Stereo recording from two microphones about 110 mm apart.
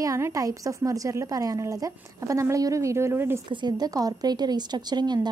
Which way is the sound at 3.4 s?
40° right (ahead or behind).